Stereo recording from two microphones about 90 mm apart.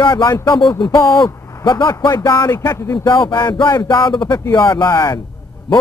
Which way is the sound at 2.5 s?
40° left (ahead or behind).